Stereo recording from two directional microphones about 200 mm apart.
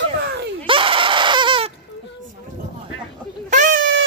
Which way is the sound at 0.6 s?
25° right (ahead or behind).